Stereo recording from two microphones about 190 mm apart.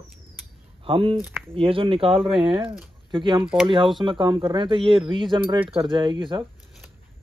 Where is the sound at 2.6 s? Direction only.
5° right (ahead or behind).